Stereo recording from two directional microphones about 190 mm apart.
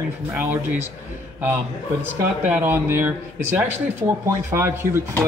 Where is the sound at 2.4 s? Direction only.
10° right (ahead or behind).